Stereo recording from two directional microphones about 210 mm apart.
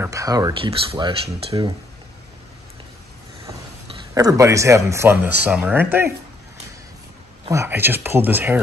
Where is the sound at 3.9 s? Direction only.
20° right (ahead or behind).